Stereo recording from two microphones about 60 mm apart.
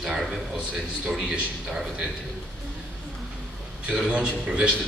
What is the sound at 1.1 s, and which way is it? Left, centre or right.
Speech, centre.